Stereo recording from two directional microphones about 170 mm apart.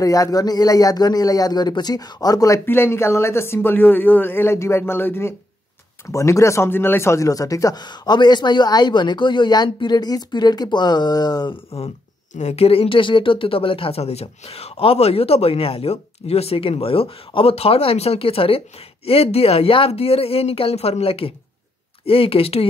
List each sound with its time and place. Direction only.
0.0 s speech: 20° left (ahead or behind)